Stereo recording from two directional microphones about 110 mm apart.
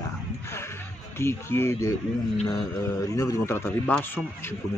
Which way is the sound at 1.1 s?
25° left (ahead or behind).